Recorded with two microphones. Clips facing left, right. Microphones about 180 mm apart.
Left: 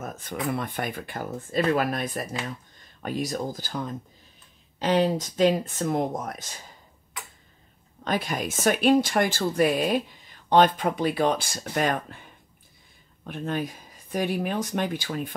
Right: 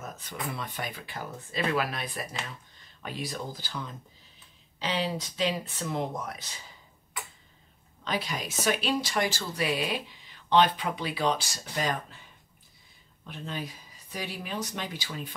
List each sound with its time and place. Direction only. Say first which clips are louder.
0.0 s a sound: left 6 dB; 50° left (ahead or behind)
0.5 s speech: left 8 dB; 50° left (ahead or behind)
8.0 s speech: left 5 dB; 50° left (ahead or behind)
13.2 s speech: left 8 dB; 50° left (ahead or behind)